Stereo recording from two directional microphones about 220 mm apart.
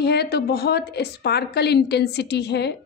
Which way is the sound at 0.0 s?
50° left (ahead or behind).